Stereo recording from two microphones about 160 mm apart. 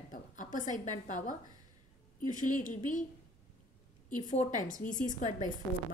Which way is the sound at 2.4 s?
55° left (ahead or behind).